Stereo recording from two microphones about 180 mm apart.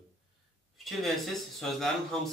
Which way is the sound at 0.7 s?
Centre (ahead or behind).